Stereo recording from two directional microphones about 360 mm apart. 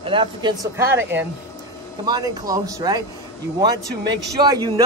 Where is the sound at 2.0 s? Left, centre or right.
Centre.